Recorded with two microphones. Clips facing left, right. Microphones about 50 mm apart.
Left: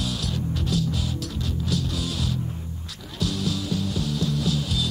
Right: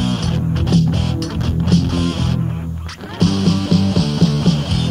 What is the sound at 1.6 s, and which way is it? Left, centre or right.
Music, right.